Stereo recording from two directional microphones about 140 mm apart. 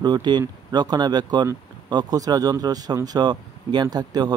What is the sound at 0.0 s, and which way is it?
Speech, 30° right (ahead or behind).